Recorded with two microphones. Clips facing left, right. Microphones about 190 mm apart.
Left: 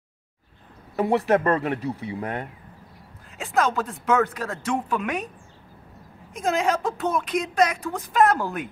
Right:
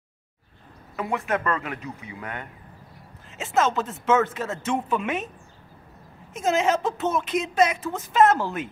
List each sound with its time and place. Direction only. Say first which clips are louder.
0.9 s speech: left 6 dB; 35° left (ahead or behind)
3.3 s speech: even; centre (ahead or behind)
6.3 s speech: right 1 dB; 5° right (ahead or behind)